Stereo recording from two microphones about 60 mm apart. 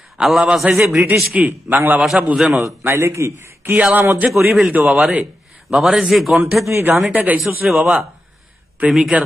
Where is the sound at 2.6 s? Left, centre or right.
Right.